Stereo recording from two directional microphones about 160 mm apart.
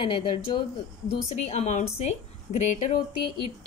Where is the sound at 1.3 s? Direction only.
45° left (ahead or behind).